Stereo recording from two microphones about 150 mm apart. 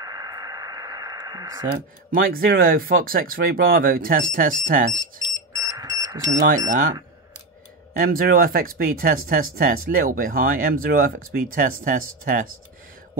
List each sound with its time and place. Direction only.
0.0 s radio: 25° right (ahead or behind)
1.7 s speech: 85° right; by 5.0 s 65° right (ahead or behind)
5.5 s smoke detector: 25° right (ahead or behind)
6.5 s speech: 60° right (ahead or behind)
8.0 s speech: 75° right (ahead or behind)